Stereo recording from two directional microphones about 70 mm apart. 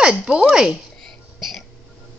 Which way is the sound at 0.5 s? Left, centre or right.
Centre.